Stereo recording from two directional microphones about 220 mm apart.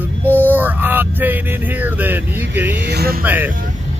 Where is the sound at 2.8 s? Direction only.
45° right (ahead or behind).